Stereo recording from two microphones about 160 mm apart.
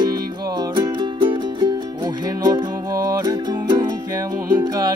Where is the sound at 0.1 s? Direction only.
30° right (ahead or behind).